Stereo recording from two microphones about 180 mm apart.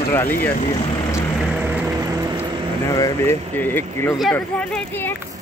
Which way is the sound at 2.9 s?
15° left (ahead or behind).